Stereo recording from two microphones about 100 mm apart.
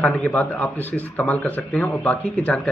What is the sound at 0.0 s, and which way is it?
A man's voice, 15° left (ahead or behind).